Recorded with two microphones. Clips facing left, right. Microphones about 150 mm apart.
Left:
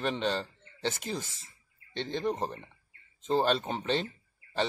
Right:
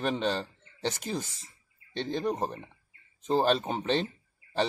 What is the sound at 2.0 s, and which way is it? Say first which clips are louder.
Speech: right 1 dB; 45° right (ahead or behind).